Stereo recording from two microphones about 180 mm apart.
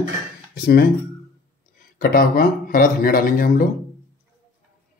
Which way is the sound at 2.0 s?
55° left (ahead or behind).